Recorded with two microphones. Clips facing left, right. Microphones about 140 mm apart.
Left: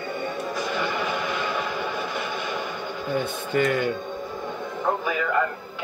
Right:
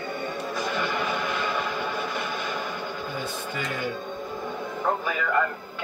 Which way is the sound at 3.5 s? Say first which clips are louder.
Left 14 dB; 55° left (ahead or behind).